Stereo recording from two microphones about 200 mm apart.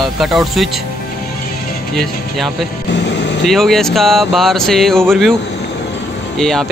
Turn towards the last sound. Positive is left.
turn(degrees=0)  # may be behind; listen again after turning